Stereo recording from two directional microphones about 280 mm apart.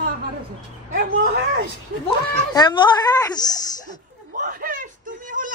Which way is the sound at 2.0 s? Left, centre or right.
Centre.